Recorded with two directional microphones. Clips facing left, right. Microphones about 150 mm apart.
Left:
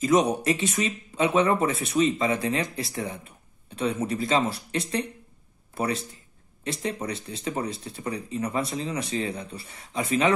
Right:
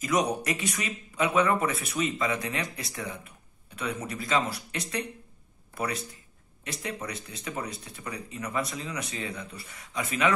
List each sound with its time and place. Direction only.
0.0 s speech: 25° left (ahead or behind)